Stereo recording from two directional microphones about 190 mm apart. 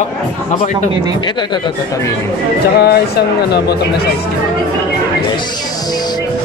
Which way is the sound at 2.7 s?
55° left (ahead or behind).